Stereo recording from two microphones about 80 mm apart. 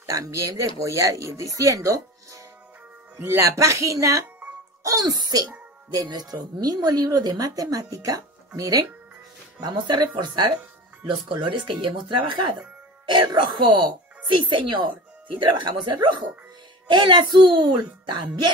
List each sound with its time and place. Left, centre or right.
0.0 s speech: right
3.2 s speech: right
5.0 s a child's voice: right
9.6 s speech: right
11.1 s speech: right
14.5 s speech: right